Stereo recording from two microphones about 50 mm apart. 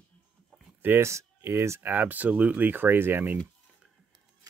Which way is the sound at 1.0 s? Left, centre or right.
Right.